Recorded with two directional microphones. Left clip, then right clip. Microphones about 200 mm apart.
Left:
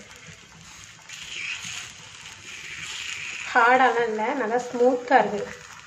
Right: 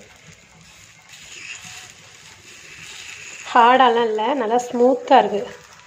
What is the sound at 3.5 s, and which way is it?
Speech, 25° right (ahead or behind).